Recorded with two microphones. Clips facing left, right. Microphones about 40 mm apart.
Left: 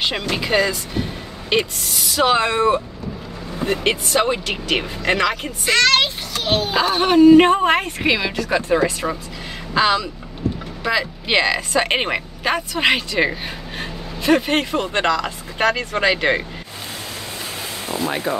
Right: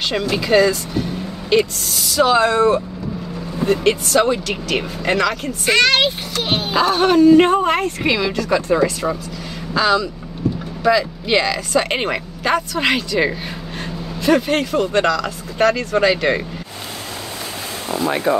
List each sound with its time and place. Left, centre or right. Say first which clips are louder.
0.4 s speech: right 5 dB; centre
5.7 s speech: right 1 dB; centre
6.4 s music: left 2 dB; right
6.7 s speech: right 3 dB; centre
17.8 s speech: right 4 dB; centre